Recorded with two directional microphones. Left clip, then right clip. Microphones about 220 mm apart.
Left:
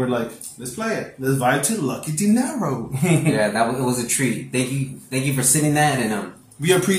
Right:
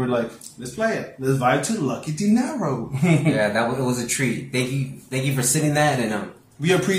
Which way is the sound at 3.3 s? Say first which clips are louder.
Left 1 dB; 15° right (ahead or behind).